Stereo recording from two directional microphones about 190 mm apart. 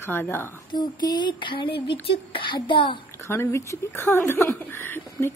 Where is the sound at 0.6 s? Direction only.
20° left (ahead or behind).